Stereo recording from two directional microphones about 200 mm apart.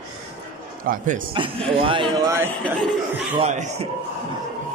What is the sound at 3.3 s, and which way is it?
Speech, 35° right (ahead or behind).